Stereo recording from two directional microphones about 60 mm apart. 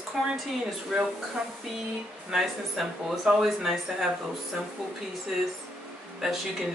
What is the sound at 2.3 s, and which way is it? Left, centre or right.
Speech, centre.